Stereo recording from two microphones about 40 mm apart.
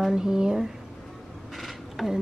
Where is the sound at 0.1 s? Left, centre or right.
Centre.